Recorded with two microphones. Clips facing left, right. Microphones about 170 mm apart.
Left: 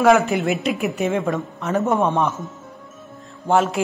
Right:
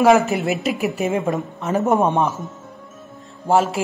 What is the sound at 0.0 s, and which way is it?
Speech, centre (ahead or behind).